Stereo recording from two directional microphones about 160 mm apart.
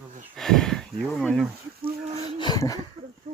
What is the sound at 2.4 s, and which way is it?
Speech, 25° left (ahead or behind).